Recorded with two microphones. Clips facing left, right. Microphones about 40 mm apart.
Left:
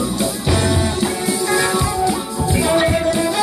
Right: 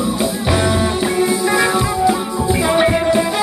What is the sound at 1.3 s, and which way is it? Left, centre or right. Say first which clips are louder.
Music: right 2 dB; centre.